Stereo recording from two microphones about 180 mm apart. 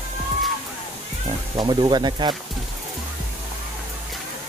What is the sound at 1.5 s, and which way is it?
Speech, 25° right (ahead or behind).